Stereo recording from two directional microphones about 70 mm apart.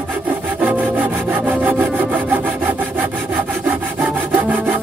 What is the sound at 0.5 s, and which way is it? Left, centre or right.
Wood, right.